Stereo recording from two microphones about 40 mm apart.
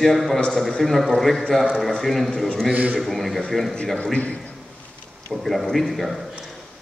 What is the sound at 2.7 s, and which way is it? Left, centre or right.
Speech, right.